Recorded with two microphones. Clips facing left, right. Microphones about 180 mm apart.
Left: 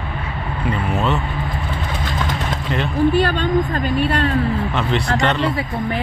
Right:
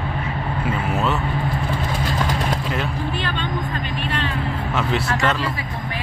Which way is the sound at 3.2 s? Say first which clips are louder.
Left 8 dB; 45° left (ahead or behind).